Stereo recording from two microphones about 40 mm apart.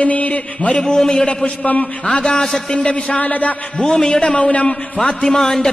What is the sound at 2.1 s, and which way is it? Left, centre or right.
A man's voice, left.